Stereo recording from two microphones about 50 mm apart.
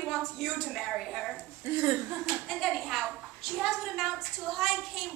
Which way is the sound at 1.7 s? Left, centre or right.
Right.